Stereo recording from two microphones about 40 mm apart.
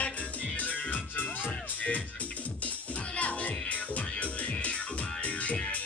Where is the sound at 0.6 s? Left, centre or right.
Left.